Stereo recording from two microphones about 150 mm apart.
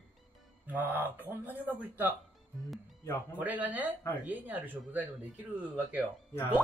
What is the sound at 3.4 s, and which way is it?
Speech, 10° right (ahead or behind).